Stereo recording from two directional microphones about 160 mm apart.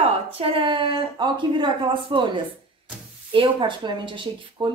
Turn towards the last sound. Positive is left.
turn(degrees=-30)  # may be behind; listen again after turning